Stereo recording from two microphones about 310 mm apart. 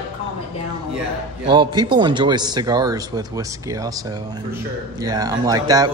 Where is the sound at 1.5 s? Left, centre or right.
Centre.